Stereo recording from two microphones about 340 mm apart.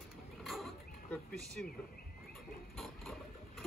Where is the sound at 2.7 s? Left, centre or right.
Centre.